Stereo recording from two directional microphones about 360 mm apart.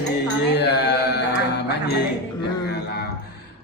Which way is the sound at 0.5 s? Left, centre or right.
Left.